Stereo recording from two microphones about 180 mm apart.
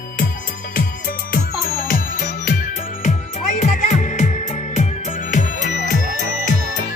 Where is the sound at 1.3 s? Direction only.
50° left (ahead or behind).